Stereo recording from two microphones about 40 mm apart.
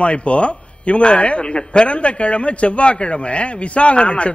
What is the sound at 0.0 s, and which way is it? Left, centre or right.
A man's voice, left.